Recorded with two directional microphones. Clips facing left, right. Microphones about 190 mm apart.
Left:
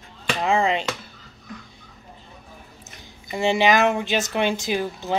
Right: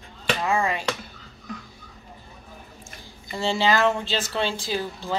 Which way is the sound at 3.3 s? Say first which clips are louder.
Left 4 dB; 15° left (ahead or behind).